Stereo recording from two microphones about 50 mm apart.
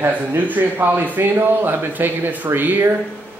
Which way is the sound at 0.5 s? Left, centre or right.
Right.